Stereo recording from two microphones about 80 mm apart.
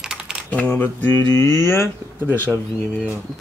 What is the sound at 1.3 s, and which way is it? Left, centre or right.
Speech, left.